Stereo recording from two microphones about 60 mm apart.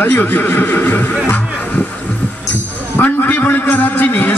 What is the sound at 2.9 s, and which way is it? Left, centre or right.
A man's voice, left.